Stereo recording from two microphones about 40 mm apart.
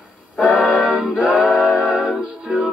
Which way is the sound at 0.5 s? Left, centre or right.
Right.